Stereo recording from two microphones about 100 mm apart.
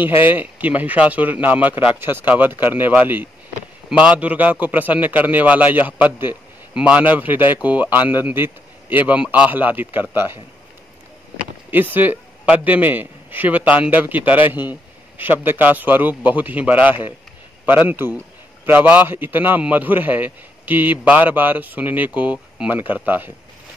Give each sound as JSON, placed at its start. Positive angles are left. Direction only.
{"t": 0.2, "sound": "a man's voice", "side_deg": -15}
{"t": 11.7, "sound": "a man's voice", "side_deg": -20}